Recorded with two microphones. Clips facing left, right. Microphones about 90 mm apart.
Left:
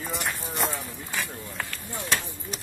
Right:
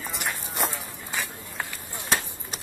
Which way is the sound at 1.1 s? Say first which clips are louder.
Even; 15° right (ahead or behind).